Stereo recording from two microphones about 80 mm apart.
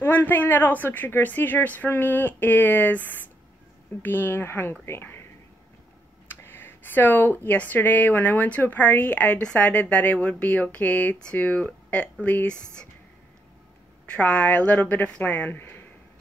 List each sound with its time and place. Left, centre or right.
0.0 s speech: left
6.2 s speech: left
14.0 s speech: centre